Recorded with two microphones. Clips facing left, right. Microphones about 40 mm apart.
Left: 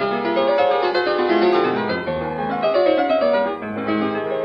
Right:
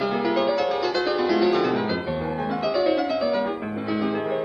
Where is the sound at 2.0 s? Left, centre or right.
Centre.